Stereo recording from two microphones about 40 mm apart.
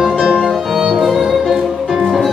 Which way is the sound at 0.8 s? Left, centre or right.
Centre.